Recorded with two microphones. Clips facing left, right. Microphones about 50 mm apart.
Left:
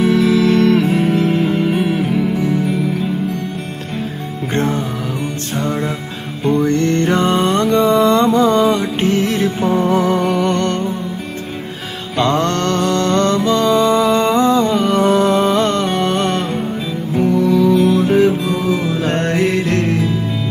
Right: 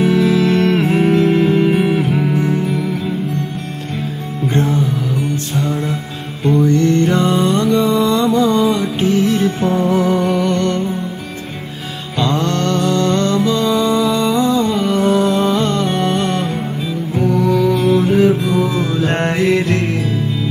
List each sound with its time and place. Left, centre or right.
0.0 s music: right
6.6 s music: left
10.0 s music: left
12.2 s music: left